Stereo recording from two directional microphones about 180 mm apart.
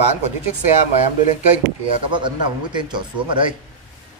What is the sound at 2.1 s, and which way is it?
Speech, 25° right (ahead or behind).